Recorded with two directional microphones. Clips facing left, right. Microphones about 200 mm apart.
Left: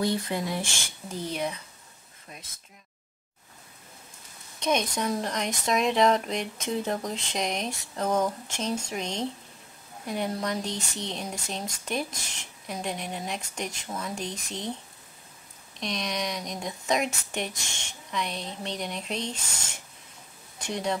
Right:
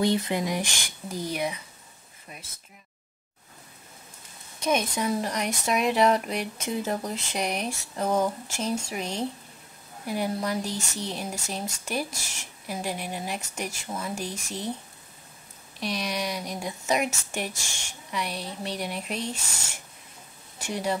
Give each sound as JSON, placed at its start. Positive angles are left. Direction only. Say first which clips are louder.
{"t": 0.0, "sound": "speech", "louder": "right 3 dB", "side_deg": -20}
{"t": 4.6, "sound": "speech", "louder": "right 1 dB", "side_deg": -5}
{"t": 15.8, "sound": "speech", "louder": "right 1 dB", "side_deg": -5}
{"t": 20.5, "sound": "speech", "louder": "right 1 dB", "side_deg": -5}